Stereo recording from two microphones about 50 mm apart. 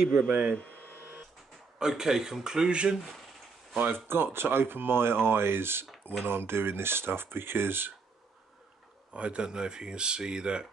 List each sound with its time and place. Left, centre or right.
0.3 s speech: right
0.8 s printer: left
1.8 s speech: centre
3.7 s speech: right
9.1 s speech: right